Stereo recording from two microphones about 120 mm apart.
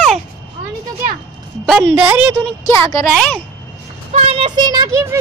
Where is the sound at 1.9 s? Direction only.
10° right (ahead or behind).